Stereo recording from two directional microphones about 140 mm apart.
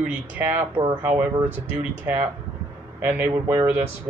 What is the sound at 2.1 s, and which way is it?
Speech, 15° right (ahead or behind).